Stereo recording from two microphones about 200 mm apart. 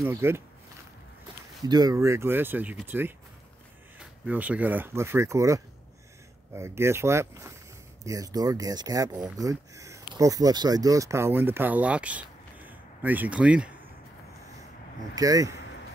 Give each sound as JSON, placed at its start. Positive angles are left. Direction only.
{"t": 0.0, "sound": "speech", "side_deg": -10}
{"t": 1.7, "sound": "speech", "side_deg": -20}
{"t": 15.1, "sound": "speech", "side_deg": -15}